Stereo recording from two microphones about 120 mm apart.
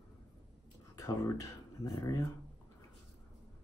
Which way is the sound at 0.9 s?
30° left (ahead or behind).